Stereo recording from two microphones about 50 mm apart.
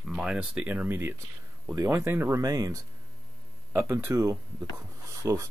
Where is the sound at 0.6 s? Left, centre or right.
Right.